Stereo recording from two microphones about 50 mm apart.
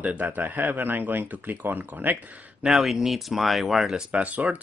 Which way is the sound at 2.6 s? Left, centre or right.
Centre.